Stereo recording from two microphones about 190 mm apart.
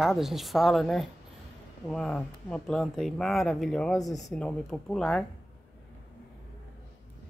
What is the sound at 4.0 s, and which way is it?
Speech, 20° left (ahead or behind).